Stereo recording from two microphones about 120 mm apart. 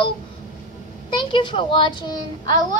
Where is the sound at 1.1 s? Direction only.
40° left (ahead or behind).